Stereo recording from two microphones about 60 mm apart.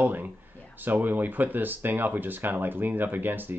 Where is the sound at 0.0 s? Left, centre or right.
Right.